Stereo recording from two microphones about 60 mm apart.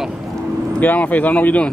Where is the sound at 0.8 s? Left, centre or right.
Left.